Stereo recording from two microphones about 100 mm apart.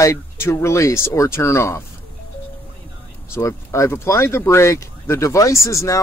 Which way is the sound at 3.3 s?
30° left (ahead or behind).